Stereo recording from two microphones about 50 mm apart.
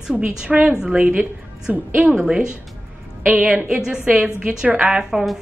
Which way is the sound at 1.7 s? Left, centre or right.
Right.